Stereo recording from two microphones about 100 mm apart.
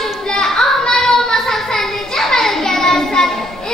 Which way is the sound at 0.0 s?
5° left (ahead or behind).